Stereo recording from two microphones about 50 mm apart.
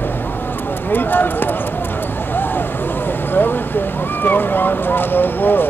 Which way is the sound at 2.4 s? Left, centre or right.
Left.